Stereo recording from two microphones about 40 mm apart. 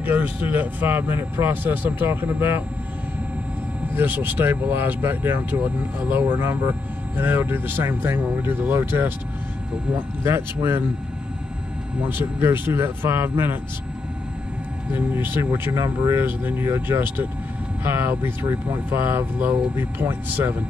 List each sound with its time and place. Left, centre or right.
0.0 s speech: right
1.5 s speech: right
2.0 s speech: right
4.1 s speech: right
8.2 s speech: right
10.2 s speech: right
12.1 s speech: right
15.0 s speech: right